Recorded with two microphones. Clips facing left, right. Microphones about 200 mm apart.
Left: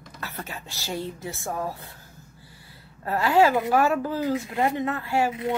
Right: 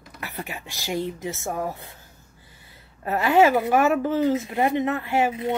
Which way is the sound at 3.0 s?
20° right (ahead or behind).